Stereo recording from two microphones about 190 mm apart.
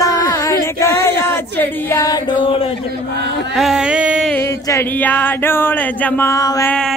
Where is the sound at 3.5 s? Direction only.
Centre (ahead or behind).